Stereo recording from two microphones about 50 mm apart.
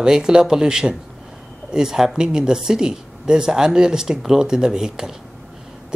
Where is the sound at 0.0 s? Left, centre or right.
Centre.